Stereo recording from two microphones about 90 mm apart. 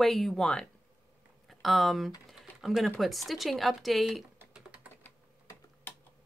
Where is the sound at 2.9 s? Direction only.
Centre (ahead or behind).